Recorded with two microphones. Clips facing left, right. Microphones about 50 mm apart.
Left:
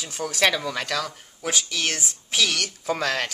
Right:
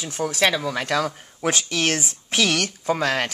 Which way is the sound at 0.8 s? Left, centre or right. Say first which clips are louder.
Right 5 dB; right.